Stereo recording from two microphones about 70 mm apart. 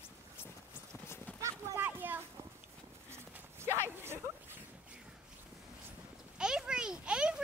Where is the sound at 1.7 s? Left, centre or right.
Right.